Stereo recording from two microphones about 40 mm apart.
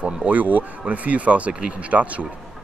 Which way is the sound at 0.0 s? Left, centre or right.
Right.